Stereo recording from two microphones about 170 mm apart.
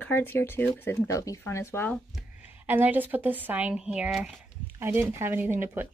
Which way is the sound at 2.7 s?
10° right (ahead or behind).